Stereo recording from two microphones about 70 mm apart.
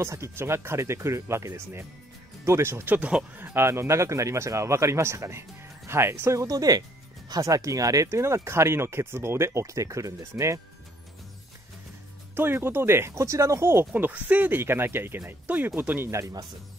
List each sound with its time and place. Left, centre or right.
0.0 s speech: right
2.9 s speech: centre
3.3 s speech: right
6.4 s speech: right
12.4 s speech: right
13.9 s speech: right
16.1 s speech: right